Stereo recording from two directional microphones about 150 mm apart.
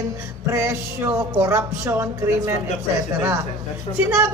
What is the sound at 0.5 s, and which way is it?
Speech, 20° right (ahead or behind).